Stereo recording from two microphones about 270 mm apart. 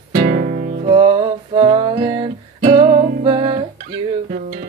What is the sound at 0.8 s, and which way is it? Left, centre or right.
Music, centre.